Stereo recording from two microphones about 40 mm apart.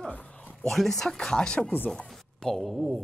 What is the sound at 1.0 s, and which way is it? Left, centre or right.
Speech, centre.